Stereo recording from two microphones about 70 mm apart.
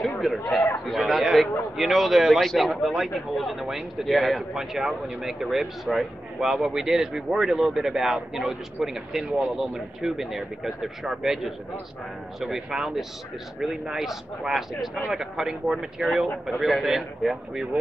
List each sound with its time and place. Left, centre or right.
0.0 s speech: centre